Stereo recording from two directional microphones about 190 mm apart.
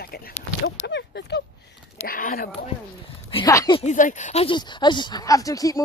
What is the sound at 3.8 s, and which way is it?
Speech, 40° left (ahead or behind).